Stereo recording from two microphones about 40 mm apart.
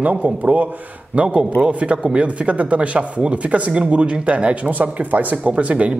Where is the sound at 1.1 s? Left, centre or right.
Right.